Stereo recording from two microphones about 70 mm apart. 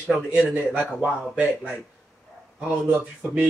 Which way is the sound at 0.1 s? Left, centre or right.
Centre.